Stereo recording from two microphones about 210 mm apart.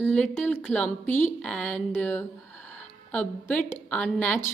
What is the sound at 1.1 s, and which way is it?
Speech, 35° left (ahead or behind).